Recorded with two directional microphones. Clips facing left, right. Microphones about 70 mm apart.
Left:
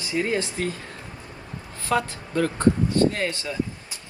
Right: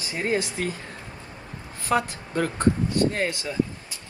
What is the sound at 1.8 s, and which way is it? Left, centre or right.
A woman's voice, right.